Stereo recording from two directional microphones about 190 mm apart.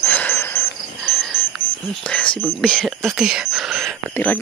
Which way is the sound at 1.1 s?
Centre (ahead or behind).